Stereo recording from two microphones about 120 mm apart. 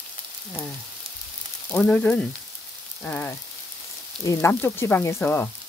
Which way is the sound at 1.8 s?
10° left (ahead or behind).